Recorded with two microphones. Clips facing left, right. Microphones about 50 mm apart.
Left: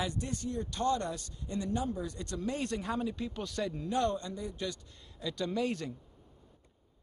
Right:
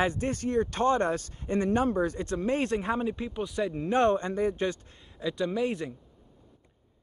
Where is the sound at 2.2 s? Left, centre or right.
Right.